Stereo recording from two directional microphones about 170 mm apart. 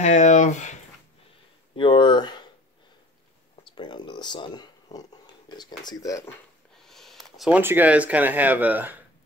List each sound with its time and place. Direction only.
0.0 s speech: 45° left (ahead or behind)
1.8 s speech: 30° left (ahead or behind)
3.7 s speech: 25° left (ahead or behind)
6.8 s speech: centre (ahead or behind)